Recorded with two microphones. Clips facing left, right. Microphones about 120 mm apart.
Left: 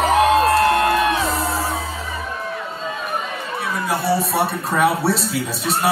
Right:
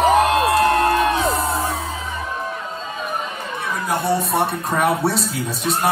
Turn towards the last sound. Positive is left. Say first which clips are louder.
# even
turn(degrees=0)  # may be behind; listen again after turning